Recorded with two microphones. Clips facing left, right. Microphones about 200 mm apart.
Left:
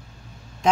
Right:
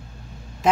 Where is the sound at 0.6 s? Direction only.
5° right (ahead or behind).